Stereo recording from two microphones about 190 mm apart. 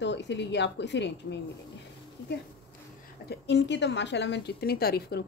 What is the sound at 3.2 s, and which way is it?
Speech, 65° left (ahead or behind).